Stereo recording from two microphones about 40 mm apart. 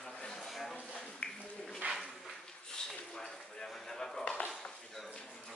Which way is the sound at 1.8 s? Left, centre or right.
Right.